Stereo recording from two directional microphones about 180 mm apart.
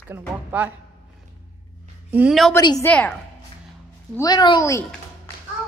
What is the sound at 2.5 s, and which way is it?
Speech, 20° left (ahead or behind).